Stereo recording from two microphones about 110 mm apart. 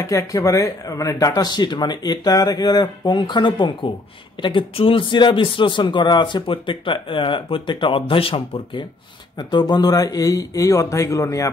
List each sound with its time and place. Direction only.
0.0 s a man's voice: 30° left (ahead or behind); by 8.8 s 55° left (ahead or behind)
9.4 s speech: 40° left (ahead or behind)